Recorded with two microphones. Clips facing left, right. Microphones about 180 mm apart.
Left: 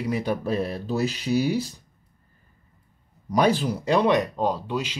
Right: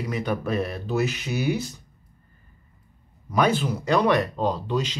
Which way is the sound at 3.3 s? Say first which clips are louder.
Left 1 dB; 35° left (ahead or behind).